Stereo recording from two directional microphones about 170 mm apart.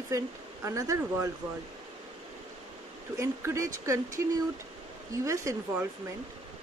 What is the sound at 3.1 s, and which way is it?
Speech, 15° right (ahead or behind).